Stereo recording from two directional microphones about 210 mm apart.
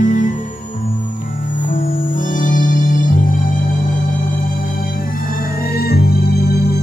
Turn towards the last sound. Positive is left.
turn(degrees=50)  # may be behind; listen again after turning